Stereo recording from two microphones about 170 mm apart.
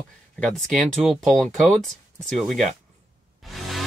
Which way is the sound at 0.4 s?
5° left (ahead or behind).